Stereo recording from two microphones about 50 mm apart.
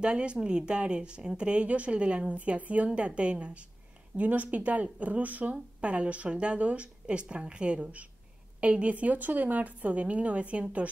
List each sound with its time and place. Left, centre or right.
0.0 s speech: right